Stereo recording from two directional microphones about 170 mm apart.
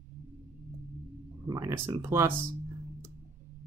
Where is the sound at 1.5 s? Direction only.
20° right (ahead or behind).